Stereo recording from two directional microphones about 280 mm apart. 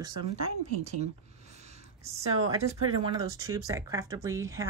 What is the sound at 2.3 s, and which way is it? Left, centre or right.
Speech, right.